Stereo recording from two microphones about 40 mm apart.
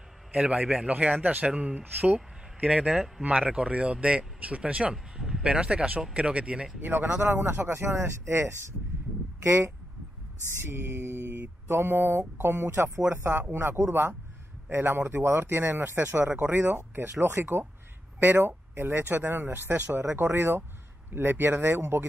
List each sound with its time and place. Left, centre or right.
0.3 s speech: right
2.6 s speech: right
5.1 s a sound: centre
5.4 s speech: right
6.8 s speech: right
7.2 s speech: right
7.7 s speech: right
10.5 s speech: right
11.7 s speech: right
13.2 s speech: right
14.8 s speech: right
18.2 s speech: right
21.1 s speech: right